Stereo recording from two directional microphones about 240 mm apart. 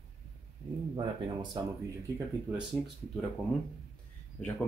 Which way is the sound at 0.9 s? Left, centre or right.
Centre.